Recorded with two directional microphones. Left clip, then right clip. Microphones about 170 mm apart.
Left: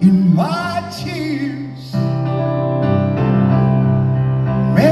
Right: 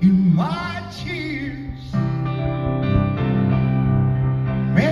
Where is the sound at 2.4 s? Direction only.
15° right (ahead or behind).